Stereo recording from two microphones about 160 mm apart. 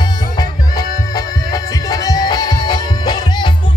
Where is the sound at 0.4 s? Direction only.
25° left (ahead or behind).